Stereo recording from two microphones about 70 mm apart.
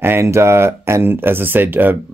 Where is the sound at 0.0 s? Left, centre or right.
Right.